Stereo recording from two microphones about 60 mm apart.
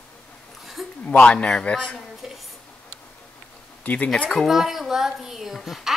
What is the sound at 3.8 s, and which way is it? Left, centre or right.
Speech, left.